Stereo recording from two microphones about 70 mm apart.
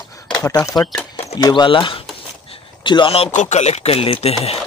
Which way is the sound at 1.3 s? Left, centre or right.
Left.